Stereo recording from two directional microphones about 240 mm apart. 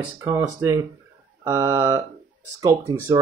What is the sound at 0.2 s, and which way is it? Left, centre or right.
Speech, centre.